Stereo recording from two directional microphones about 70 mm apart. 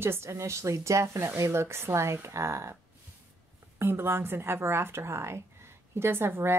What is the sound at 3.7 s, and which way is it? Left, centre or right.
Speech, right.